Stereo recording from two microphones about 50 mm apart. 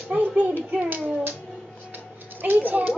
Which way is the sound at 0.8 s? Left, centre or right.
Right.